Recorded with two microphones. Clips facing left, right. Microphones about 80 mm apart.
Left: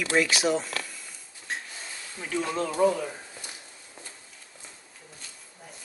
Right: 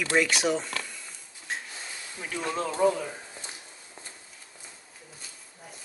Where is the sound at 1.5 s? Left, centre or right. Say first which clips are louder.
Even; centre.